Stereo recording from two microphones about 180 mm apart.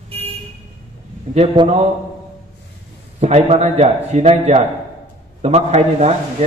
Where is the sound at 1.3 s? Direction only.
35° right (ahead or behind).